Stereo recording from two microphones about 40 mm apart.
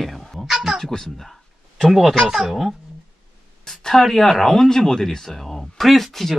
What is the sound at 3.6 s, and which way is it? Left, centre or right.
Speech, centre.